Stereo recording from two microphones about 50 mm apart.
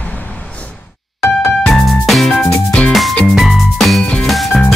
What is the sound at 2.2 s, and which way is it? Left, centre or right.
Music, centre.